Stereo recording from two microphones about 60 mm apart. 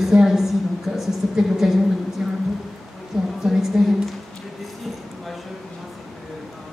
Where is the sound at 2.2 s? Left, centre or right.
Centre.